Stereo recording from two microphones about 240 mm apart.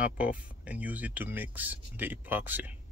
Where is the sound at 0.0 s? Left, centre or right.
Centre.